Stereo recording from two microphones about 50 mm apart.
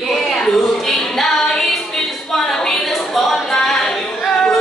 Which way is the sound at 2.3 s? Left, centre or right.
Centre.